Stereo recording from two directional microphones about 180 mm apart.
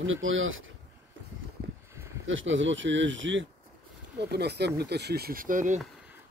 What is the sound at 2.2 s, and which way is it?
Speech, 90° right.